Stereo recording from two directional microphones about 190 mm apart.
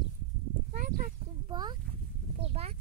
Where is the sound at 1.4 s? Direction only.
20° right (ahead or behind).